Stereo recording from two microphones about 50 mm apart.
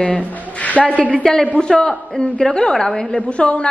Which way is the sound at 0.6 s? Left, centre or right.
Left.